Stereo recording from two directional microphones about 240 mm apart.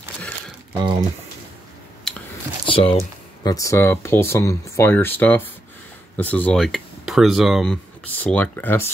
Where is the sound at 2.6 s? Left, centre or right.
Left.